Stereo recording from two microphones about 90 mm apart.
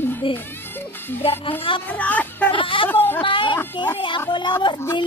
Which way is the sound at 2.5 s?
70° left (ahead or behind).